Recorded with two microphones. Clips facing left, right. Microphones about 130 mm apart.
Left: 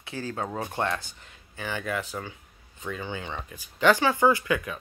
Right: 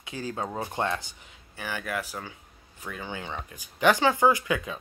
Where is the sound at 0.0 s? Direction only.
15° right (ahead or behind).